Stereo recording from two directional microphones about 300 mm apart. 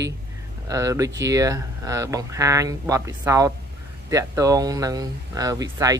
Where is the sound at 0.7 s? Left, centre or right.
Centre.